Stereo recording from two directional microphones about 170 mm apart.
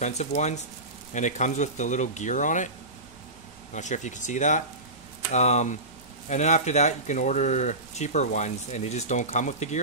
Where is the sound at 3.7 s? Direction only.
45° left (ahead or behind).